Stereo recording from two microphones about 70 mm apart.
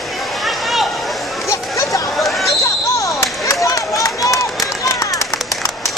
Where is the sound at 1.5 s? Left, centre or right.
Left.